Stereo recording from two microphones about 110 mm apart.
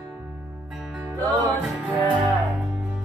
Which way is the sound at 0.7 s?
5° right (ahead or behind).